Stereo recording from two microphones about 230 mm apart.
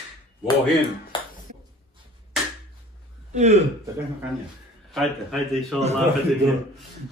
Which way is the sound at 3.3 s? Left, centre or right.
Right.